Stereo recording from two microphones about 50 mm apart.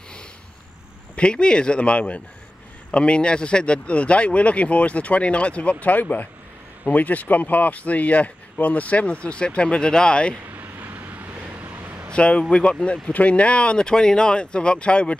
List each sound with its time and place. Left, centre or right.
1.1 s speech: centre
10.5 s a sound: right
12.1 s speech: left
13.1 s speech: left